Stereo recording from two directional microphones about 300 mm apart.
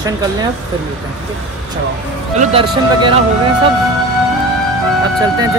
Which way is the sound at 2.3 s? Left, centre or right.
Right.